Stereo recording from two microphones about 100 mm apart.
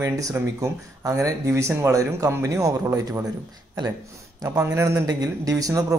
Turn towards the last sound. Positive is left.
turn(degrees=-35)  # may be behind; listen again after turning